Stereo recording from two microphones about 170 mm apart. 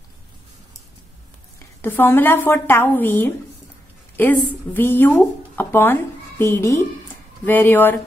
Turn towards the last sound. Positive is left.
turn(degrees=10)  # may be behind; listen again after turning